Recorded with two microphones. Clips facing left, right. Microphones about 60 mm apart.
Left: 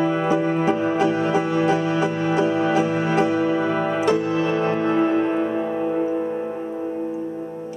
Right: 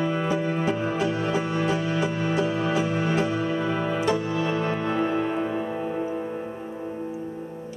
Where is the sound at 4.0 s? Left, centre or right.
Left.